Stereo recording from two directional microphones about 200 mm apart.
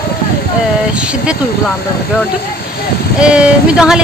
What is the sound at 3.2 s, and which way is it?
Speech, 5° right (ahead or behind).